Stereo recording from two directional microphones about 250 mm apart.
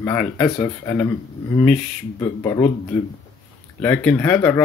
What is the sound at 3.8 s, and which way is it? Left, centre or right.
Speech, centre.